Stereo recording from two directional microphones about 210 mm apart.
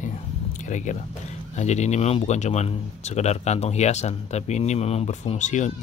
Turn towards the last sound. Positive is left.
turn(degrees=35)  # may be behind; listen again after turning